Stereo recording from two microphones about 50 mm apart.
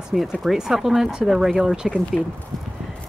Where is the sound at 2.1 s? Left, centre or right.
Left.